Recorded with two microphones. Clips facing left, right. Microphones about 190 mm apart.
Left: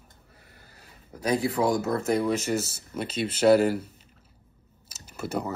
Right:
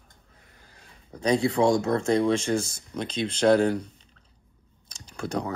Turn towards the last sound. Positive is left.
turn(degrees=5)  # may be behind; listen again after turning